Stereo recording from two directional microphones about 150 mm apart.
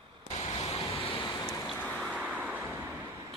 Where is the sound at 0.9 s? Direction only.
35° left (ahead or behind).